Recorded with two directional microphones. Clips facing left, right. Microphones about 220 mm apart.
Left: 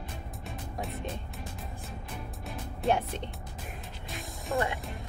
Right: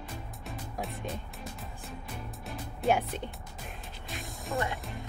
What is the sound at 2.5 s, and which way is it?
Music, centre (ahead or behind).